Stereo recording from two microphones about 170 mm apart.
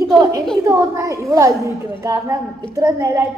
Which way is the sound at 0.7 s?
20° right (ahead or behind).